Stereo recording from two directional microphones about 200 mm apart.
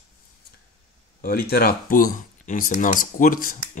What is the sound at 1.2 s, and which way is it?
Speech, 50° left (ahead or behind).